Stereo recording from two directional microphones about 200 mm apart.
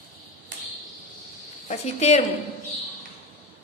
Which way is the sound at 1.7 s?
35° left (ahead or behind).